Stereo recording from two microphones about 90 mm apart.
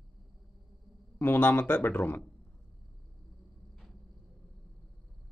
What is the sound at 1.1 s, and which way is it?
Speech, 25° left (ahead or behind).